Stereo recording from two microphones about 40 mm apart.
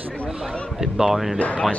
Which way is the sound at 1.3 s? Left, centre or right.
Left.